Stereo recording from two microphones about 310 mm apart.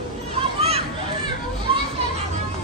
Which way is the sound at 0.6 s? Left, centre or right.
Centre.